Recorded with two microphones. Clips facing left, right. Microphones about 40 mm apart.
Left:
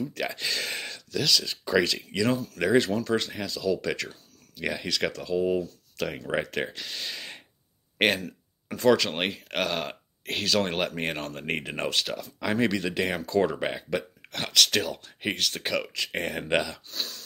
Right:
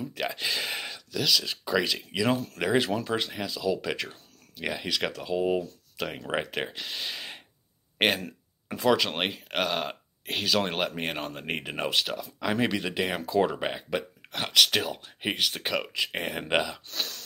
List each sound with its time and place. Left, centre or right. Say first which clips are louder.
0.1 s speech: even; centre
5.3 s speech: even; right
5.9 s speech: left 2 dB; centre
12.5 s speech: left 2 dB; centre
16.8 s speech: right 1 dB; right